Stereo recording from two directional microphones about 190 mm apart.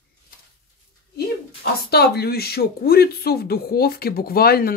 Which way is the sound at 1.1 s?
55° left (ahead or behind).